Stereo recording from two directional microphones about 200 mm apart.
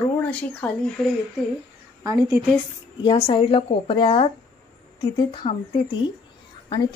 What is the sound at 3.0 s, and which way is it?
A woman's voice, 25° left (ahead or behind).